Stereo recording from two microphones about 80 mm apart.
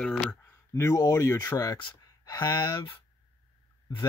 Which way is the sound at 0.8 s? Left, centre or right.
Left.